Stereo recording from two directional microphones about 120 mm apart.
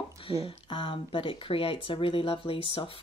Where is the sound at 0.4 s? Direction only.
45° left (ahead or behind).